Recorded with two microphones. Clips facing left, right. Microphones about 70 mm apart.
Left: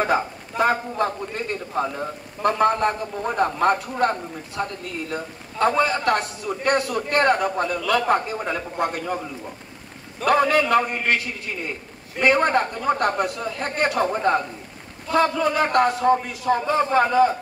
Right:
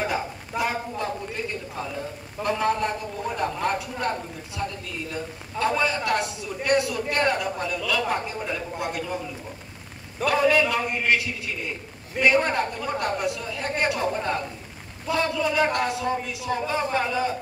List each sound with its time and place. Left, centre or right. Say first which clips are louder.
0.0 s a man's voice: left 6 dB; left
5.1 s a man's voice: left 2 dB; left
10.2 s a man's voice: left 2 dB; left